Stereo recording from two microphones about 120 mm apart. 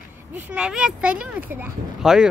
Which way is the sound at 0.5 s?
10° right (ahead or behind).